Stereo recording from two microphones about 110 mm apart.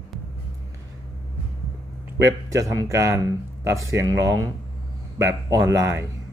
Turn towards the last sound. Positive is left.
turn(degrees=-25)  # may be behind; listen again after turning